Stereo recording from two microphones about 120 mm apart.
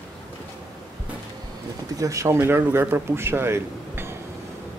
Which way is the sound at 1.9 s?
25° right (ahead or behind).